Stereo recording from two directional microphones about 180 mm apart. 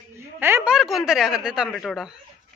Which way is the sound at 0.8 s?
Centre (ahead or behind).